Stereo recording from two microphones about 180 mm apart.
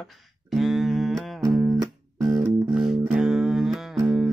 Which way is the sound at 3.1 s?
5° right (ahead or behind).